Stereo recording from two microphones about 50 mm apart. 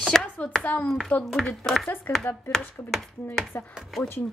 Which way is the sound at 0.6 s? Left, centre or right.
Left.